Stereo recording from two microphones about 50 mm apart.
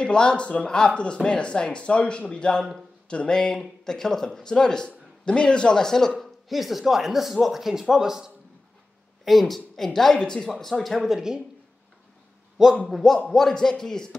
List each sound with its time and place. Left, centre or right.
0.0 s speech: centre
6.1 s speech: centre
9.2 s a woman's voice: centre
10.5 s speech: centre
12.8 s speech: centre